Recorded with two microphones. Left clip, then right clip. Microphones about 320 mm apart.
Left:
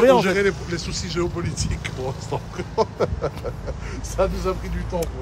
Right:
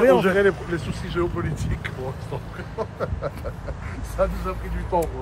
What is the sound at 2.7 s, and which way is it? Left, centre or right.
Speech, centre.